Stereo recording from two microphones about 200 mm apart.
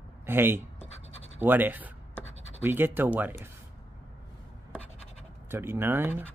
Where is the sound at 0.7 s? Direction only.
30° left (ahead or behind).